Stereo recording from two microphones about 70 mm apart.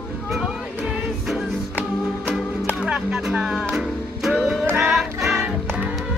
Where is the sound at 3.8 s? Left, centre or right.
Centre.